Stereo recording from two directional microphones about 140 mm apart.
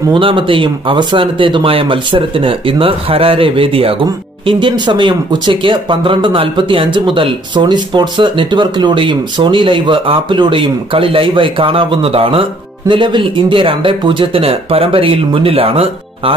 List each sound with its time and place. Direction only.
0.1 s speech: 35° right (ahead or behind)